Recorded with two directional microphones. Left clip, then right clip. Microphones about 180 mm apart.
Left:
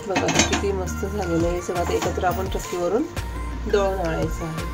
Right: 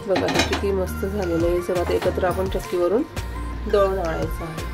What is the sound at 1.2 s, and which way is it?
Speech, centre (ahead or behind).